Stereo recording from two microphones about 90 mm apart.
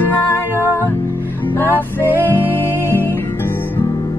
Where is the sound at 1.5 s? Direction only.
25° left (ahead or behind).